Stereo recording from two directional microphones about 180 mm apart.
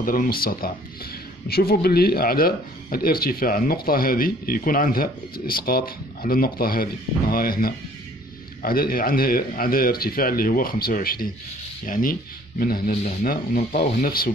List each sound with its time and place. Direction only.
0.0 s a man's voice: 50° left (ahead or behind)